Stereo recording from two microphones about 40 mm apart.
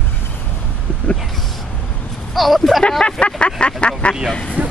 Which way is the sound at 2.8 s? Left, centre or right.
Left.